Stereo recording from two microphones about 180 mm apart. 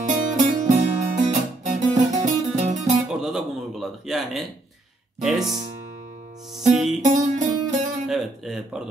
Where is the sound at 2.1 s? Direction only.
40° right (ahead or behind).